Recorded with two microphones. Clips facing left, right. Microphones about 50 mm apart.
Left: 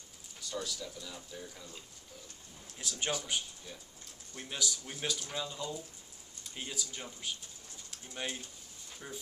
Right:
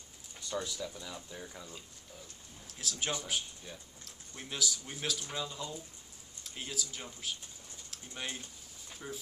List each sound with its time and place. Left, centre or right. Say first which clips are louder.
0.5 s speech: right 2 dB; right
2.6 s a sound: even; centre
3.3 s speech: even; centre